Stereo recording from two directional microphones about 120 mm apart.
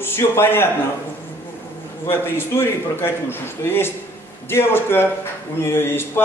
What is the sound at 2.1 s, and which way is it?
A man's voice, 20° left (ahead or behind).